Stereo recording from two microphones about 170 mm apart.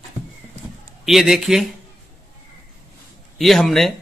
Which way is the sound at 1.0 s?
Centre (ahead or behind).